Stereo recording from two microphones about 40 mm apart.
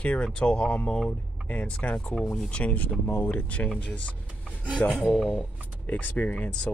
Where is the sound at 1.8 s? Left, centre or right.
Left.